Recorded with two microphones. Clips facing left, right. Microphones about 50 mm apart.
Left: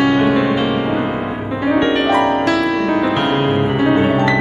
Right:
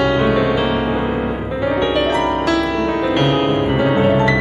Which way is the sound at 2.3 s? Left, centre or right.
Left.